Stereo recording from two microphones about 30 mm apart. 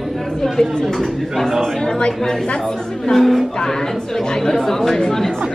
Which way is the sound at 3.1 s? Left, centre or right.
Centre.